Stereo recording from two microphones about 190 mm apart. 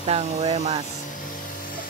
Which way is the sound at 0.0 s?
30° right (ahead or behind).